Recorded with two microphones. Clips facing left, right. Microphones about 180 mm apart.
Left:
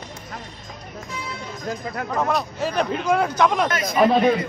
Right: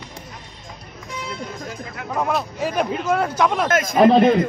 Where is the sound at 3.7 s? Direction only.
45° right (ahead or behind).